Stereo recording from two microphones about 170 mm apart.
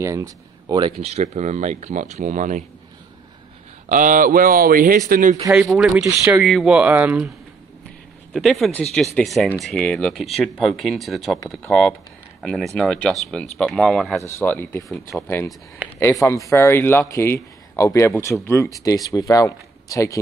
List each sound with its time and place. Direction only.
0.0 s speech: 20° right (ahead or behind)
1.0 s speech: 40° right (ahead or behind)
3.9 s speech: 50° right (ahead or behind)
5.5 s speech: 5° right (ahead or behind)
5.9 s speech: 15° right (ahead or behind)
6.4 s speech: centre (ahead or behind)
8.3 s speech: centre (ahead or behind)
16.2 s speech: 5° left (ahead or behind)
16.5 s speech: 15° left (ahead or behind)